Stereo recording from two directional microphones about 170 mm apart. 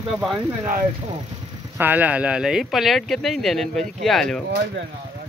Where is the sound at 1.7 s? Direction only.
10° right (ahead or behind).